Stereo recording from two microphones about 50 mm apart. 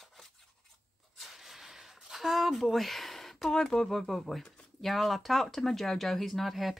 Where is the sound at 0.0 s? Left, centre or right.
Centre.